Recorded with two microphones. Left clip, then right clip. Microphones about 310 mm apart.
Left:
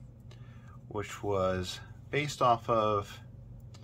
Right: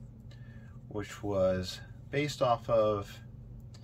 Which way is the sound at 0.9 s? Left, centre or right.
Centre.